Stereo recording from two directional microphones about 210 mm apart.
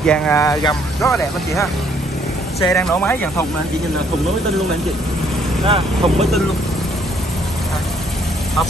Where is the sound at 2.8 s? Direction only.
5° left (ahead or behind).